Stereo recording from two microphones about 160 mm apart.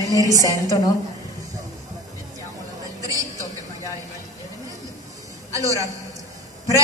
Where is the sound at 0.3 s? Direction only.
20° left (ahead or behind).